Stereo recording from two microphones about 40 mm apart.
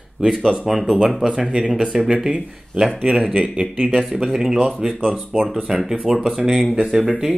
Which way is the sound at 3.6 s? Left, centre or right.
Centre.